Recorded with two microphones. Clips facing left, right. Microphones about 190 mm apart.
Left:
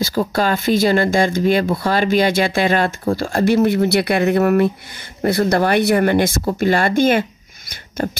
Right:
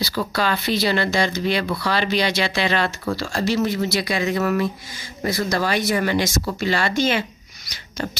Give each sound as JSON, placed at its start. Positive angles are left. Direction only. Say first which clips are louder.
{"t": 0.3, "sound": "speech", "louder": "left 4 dB", "side_deg": 45}